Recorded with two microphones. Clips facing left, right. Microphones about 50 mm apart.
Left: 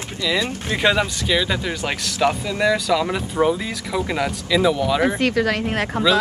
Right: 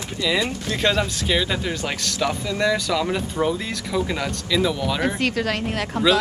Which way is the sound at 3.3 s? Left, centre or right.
Centre.